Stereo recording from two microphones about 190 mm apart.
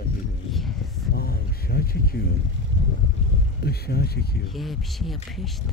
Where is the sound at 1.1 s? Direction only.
55° left (ahead or behind).